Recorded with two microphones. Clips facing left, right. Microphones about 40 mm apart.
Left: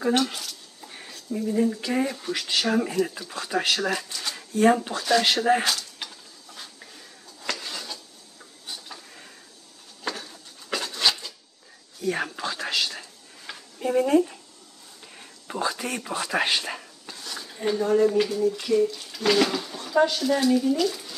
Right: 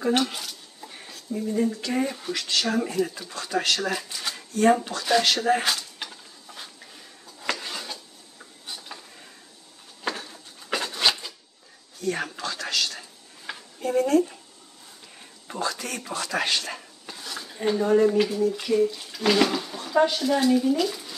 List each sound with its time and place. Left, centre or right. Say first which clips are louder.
0.1 s dishes: even; centre
0.9 s a sound: left 1 dB; centre
1.8 s speech: left 1 dB; centre
3.0 s speech: left 1 dB; centre
3.3 s speech: even; centre
4.1 s speech: even; centre
4.9 s speech: even; centre
5.6 s dishes: even; centre
10.0 s a sound: right 2 dB; centre
12.0 s whispering: left 1 dB; centre
13.5 s a sound: right 3 dB; centre
13.8 s speech: left 1 dB; centre
15.4 s speech: left 2 dB; centre
17.0 s speech: right 1 dB; centre